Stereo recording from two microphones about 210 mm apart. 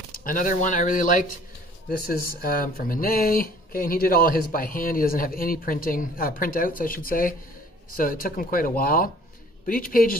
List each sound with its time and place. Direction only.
0.1 s speech: 40° left (ahead or behind)